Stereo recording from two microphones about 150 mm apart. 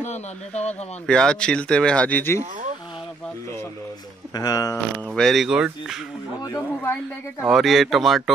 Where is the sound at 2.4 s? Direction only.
55° right (ahead or behind).